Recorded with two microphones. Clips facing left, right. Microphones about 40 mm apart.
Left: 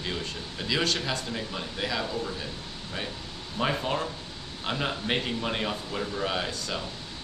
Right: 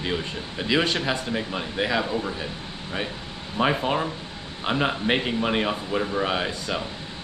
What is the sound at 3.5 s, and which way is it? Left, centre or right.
Speech, right.